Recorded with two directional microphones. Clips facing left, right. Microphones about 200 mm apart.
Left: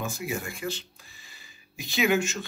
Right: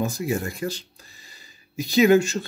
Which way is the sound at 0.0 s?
40° right (ahead or behind).